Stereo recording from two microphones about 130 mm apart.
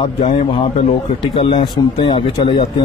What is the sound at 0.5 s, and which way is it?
Speech, 40° left (ahead or behind).